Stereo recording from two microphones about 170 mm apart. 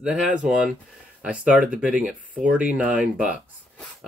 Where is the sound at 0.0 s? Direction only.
5° right (ahead or behind).